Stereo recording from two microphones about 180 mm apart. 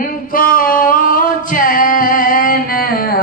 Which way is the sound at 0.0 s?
50° left (ahead or behind).